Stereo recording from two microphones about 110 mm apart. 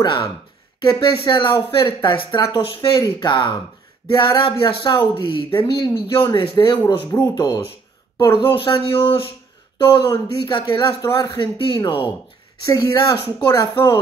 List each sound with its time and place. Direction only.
0.0 s speech: 45° left (ahead or behind)
2.4 s speech: 40° left (ahead or behind)
7.2 s speech: 35° left (ahead or behind)
8.4 s speech: 50° left (ahead or behind)
9.8 s speech: 40° left (ahead or behind)